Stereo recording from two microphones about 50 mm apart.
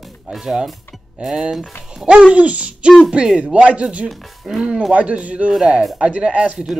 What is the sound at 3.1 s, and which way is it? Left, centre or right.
Speech, centre.